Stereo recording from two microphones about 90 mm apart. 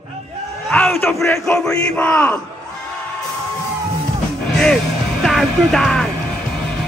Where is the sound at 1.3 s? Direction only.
10° left (ahead or behind).